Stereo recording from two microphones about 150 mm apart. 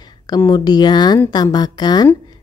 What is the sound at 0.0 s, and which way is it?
A woman's voice, 25° left (ahead or behind).